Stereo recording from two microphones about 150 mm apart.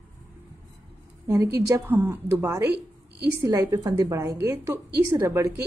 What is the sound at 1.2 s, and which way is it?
Speech, 20° right (ahead or behind).